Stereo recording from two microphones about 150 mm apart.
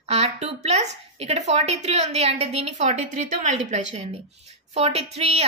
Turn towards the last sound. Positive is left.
turn(degrees=-45)  # may be behind; listen again after turning